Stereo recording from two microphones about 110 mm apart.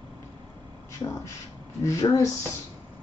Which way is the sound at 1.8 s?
30° left (ahead or behind).